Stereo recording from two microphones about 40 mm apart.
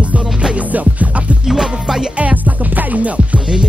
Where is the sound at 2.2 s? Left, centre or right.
Right.